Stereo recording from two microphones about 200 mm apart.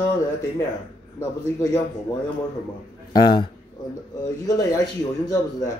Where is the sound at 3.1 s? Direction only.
20° left (ahead or behind).